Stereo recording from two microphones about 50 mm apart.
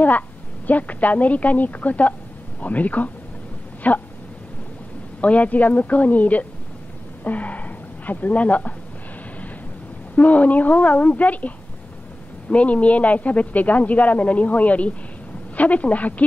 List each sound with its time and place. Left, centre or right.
0.7 s a woman's voice: left
5.2 s a woman's voice: left
10.1 s a woman's voice: left